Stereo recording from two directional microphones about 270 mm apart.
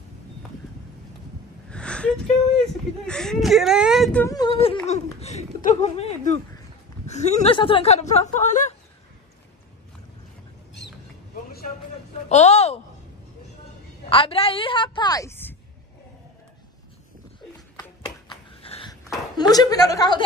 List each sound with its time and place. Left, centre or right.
1.7 s a sound: centre
2.6 s speech: centre; by 8.6 s left
12.3 s speech: left
14.0 s speech: centre
18.3 s a sound: centre
19.3 s a woman's voice: centre